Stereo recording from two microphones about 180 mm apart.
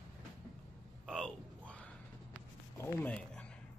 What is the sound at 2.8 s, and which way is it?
Speech, 10° left (ahead or behind).